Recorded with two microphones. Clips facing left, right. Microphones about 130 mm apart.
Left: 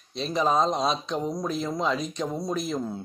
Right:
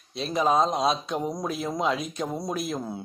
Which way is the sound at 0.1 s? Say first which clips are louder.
Right 1 dB; 5° right (ahead or behind).